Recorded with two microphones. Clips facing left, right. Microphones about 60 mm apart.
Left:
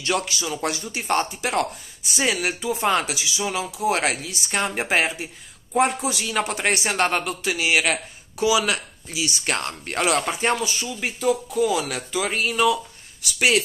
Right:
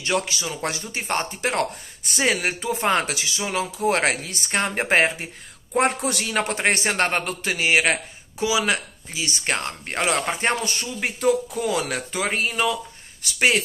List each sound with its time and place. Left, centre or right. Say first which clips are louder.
0.0 s a man's voice: even; right
6.0 s speech: right 1 dB; right
6.3 s a man's voice: right 1 dB; right
9.6 s speech: left 1 dB; right
10.6 s a man's voice: even; right